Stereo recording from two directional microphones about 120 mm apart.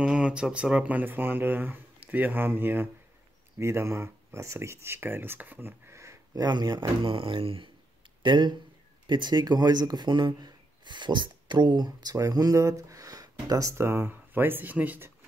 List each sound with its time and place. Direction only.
0.0 s speech: 10° right (ahead or behind); by 6.9 s 35° right (ahead or behind)
7.0 s speech: 45° right (ahead or behind); by 15.1 s 15° right (ahead or behind)